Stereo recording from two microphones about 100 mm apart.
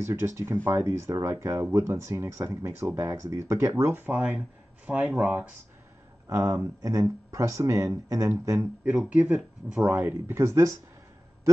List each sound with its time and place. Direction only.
0.0 s speech: 25° right (ahead or behind); by 5.5 s 10° right (ahead or behind)
6.2 s speech: 35° right (ahead or behind)
8.9 s speech: 10° right (ahead or behind)
9.9 s speech: 20° right (ahead or behind)